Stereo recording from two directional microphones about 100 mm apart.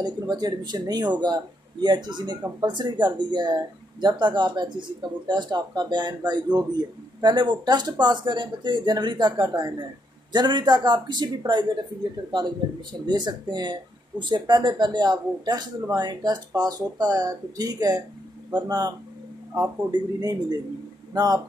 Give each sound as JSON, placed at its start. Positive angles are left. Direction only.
{"t": 0.0, "sound": "speech", "side_deg": -40}
{"t": 13.0, "sound": "a man's voice", "side_deg": -45}